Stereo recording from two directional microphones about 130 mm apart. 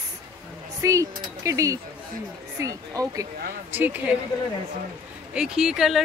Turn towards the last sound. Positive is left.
turn(degrees=-5)  # may be behind; listen again after turning